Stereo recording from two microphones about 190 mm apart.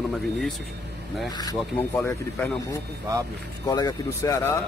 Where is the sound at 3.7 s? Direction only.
20° left (ahead or behind).